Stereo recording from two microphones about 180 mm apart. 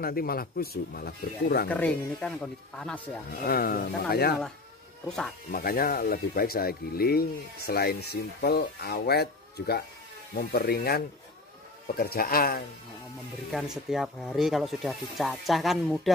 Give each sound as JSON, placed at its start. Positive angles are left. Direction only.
{"t": 0.0, "sound": "speech", "side_deg": 55}
{"t": 1.7, "sound": "speech", "side_deg": 5}
{"t": 3.4, "sound": "speech", "side_deg": 55}
{"t": 5.0, "sound": "speech", "side_deg": 5}
{"t": 5.5, "sound": "speech", "side_deg": 55}
{"t": 13.5, "sound": "speech", "side_deg": 0}